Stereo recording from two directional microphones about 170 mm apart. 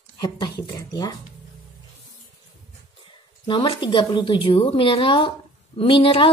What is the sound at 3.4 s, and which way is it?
A woman's voice, 30° left (ahead or behind).